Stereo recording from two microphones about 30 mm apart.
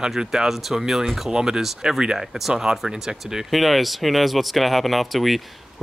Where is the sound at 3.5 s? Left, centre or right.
Centre.